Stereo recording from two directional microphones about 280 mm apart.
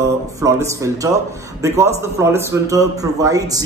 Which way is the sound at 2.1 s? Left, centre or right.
Centre.